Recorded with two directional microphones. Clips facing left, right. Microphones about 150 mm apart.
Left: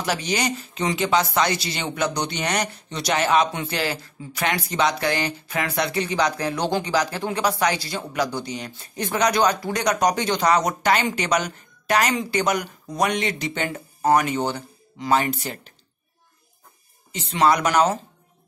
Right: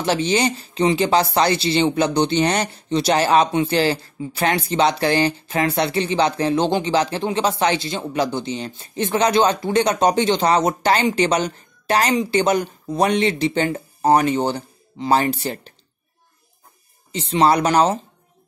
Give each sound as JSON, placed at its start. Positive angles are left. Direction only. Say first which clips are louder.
{"t": 0.0, "sound": "speech", "louder": "right 6 dB", "side_deg": -30}
{"t": 17.1, "sound": "speech", "louder": "right 3 dB", "side_deg": -30}